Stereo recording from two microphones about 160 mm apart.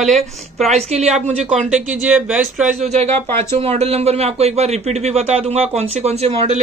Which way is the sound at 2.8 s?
45° right (ahead or behind).